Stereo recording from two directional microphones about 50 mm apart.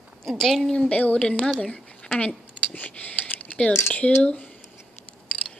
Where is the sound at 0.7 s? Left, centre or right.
Left.